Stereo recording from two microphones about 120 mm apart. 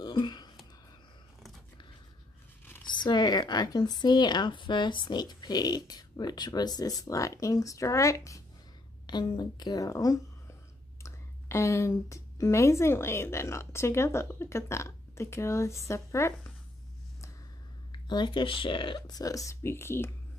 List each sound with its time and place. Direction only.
0.0 s a sound: 40° left (ahead or behind)
2.8 s speech: 40° left (ahead or behind)
9.0 s a woman's voice: 40° left (ahead or behind); by 16.5 s 20° left (ahead or behind)
17.9 s speech: 40° left (ahead or behind); by 20.1 s 20° left (ahead or behind)